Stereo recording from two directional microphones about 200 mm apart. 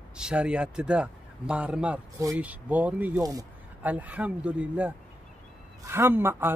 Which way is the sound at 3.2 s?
15° right (ahead or behind).